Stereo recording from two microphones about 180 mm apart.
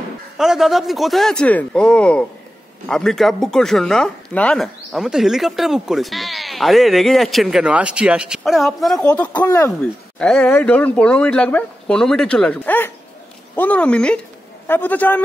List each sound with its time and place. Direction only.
0.4 s speech: centre (ahead or behind); by 9.7 s 20° left (ahead or behind)
10.1 s speech: 5° left (ahead or behind)